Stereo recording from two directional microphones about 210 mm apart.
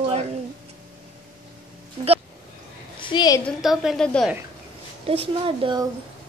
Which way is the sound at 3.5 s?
Centre (ahead or behind).